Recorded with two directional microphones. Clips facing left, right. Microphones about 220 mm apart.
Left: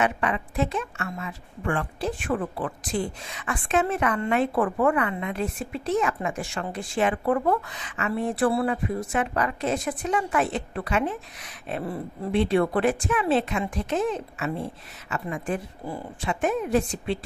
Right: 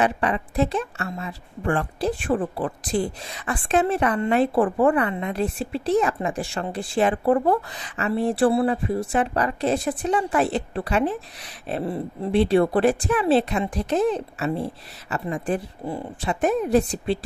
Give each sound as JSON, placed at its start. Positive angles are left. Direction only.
{"t": 0.0, "sound": "a woman's voice", "side_deg": -35}